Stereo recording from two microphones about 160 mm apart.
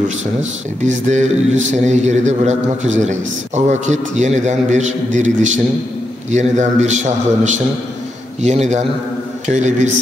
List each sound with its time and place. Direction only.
0.4 s a man's voice: 45° right (ahead or behind)